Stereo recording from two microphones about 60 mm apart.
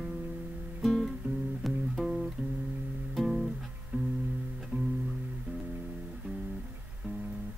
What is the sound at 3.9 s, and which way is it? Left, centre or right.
Music, right.